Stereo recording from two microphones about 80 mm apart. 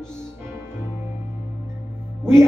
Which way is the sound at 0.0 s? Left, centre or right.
Centre.